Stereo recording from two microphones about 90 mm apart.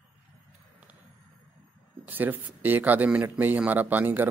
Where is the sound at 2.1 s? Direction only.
20° right (ahead or behind).